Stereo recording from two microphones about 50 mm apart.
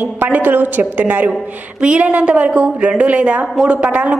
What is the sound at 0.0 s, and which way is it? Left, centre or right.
A woman's voice, right.